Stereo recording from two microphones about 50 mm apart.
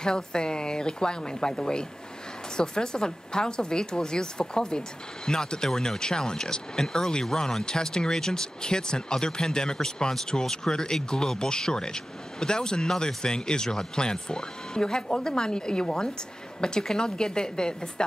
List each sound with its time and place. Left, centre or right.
0.0 s speech: centre